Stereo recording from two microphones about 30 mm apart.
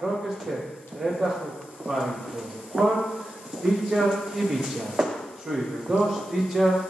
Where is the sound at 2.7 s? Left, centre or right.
Right.